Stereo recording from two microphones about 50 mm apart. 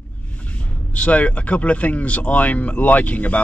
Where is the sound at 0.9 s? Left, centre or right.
Left.